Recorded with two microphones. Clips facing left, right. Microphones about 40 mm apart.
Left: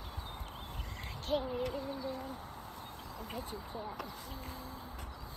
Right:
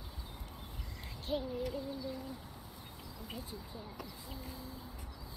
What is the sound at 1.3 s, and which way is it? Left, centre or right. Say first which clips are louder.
Owl: left 3 dB; left.